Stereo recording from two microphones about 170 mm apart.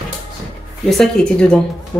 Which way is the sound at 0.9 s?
5° left (ahead or behind).